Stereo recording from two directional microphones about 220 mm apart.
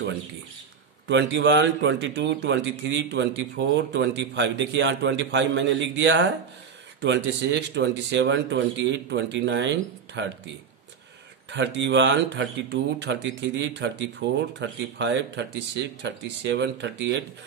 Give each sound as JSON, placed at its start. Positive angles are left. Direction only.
{"t": 1.0, "sound": "a man's voice", "side_deg": -55}
{"t": 7.5, "sound": "a man's voice", "side_deg": -50}
{"t": 11.5, "sound": "a man's voice", "side_deg": -55}